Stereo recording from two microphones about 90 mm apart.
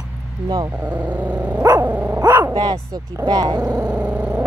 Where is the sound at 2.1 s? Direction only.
40° right (ahead or behind).